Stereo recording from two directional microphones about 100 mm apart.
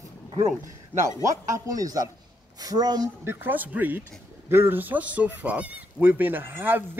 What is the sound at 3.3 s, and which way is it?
Speech, 20° right (ahead or behind).